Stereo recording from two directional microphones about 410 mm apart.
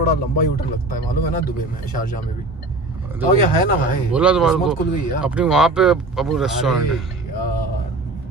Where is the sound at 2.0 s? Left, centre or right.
Centre.